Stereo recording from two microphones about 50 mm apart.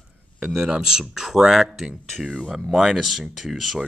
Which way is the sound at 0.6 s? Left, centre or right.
Centre.